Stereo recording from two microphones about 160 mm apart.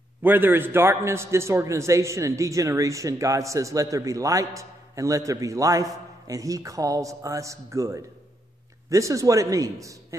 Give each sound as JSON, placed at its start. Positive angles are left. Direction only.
{"t": 0.2, "sound": "a man's voice", "side_deg": -10}